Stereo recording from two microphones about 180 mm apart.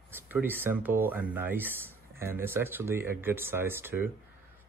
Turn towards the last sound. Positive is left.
turn(degrees=-10)  # may be behind; listen again after turning